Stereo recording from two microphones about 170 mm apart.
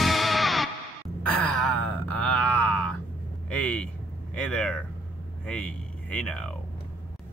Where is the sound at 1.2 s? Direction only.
5° left (ahead or behind).